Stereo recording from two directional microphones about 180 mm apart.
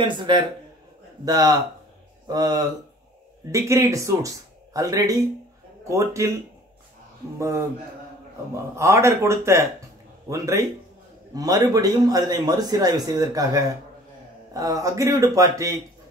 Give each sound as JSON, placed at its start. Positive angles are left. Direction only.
{"t": 0.0, "sound": "a man's voice", "side_deg": -25}
{"t": 7.3, "sound": "a man's voice", "side_deg": -15}
{"t": 8.7, "sound": "a man's voice", "side_deg": -15}